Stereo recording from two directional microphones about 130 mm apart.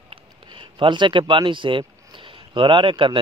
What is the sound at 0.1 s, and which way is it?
Speech, 40° right (ahead or behind).